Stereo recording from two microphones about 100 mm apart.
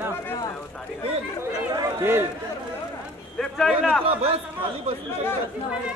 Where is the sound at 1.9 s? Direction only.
25° right (ahead or behind).